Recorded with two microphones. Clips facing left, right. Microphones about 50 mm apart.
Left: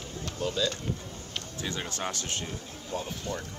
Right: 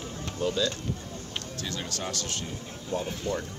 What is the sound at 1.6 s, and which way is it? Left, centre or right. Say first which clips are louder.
Speech: left 2 dB; left.